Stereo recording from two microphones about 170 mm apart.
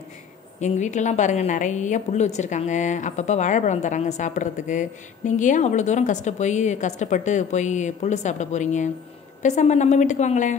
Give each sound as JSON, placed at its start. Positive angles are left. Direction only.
{"t": 0.6, "sound": "a woman's voice", "side_deg": 45}